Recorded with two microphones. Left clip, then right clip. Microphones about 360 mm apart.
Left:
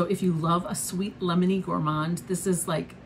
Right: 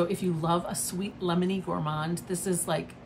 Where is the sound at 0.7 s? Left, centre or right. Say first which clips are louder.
Left 2 dB; centre.